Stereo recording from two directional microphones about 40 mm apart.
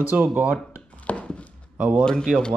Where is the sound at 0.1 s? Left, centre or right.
Right.